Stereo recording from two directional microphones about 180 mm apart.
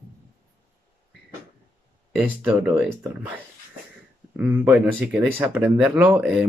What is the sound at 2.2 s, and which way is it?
Speech, 10° right (ahead or behind).